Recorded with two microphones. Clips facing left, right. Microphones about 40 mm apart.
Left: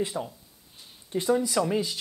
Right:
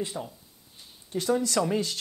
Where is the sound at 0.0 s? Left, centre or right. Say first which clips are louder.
Left 3 dB; centre.